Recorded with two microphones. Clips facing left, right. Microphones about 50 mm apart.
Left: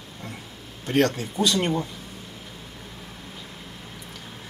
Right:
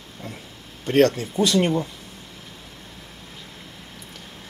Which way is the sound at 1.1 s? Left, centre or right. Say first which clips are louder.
Right 2 dB; centre.